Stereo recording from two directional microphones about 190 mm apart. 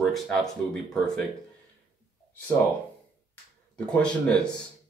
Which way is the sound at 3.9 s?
5° left (ahead or behind).